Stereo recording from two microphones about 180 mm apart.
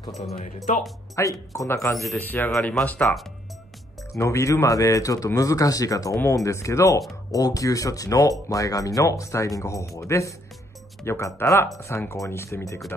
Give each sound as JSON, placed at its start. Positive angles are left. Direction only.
{"t": 1.2, "sound": "speech", "side_deg": 15}
{"t": 4.1, "sound": "speech", "side_deg": 15}